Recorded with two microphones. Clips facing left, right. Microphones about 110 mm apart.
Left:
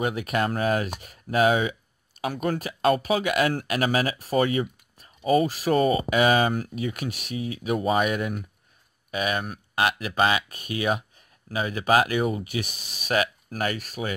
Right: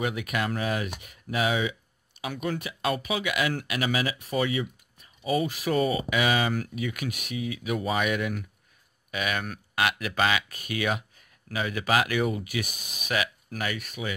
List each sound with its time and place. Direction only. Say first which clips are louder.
0.0 s speech: left 4 dB; 35° left (ahead or behind)
6.5 s speech: left 2 dB; 30° left (ahead or behind)